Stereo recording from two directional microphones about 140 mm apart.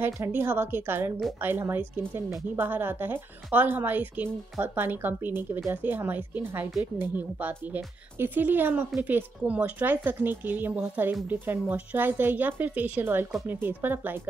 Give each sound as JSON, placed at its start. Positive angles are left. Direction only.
{"t": 0.0, "sound": "speech", "side_deg": -15}